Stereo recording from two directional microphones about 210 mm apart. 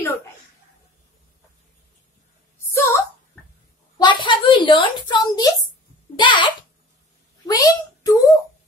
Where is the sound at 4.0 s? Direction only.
20° left (ahead or behind).